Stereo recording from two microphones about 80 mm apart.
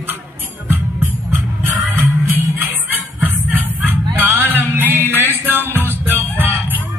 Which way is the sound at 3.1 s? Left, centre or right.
Right.